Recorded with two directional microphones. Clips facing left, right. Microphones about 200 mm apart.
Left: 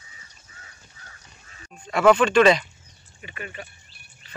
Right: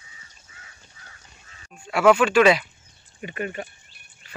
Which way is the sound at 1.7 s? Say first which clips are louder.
Even; 5° right (ahead or behind).